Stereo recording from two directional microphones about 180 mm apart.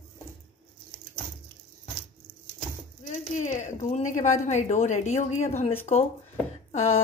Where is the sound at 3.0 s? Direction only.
45° left (ahead or behind).